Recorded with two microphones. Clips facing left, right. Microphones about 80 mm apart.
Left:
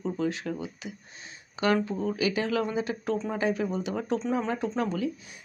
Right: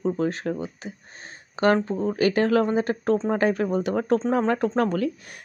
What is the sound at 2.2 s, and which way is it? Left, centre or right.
Speech, right.